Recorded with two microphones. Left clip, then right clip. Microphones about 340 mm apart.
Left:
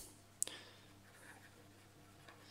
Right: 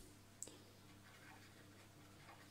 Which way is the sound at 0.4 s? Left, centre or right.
Left.